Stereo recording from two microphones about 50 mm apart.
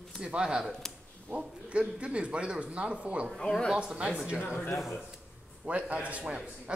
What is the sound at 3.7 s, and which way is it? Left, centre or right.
Speech, right.